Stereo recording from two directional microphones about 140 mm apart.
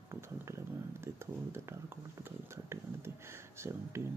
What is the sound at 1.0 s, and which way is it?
Speech, 20° right (ahead or behind).